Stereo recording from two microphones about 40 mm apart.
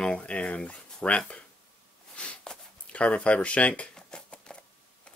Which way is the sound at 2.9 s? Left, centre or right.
Left.